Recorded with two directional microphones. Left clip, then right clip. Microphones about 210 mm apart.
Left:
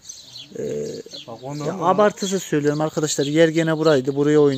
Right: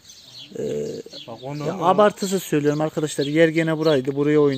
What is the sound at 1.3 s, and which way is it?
Speech, centre (ahead or behind).